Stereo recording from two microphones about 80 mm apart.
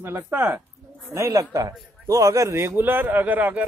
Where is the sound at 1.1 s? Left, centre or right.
Right.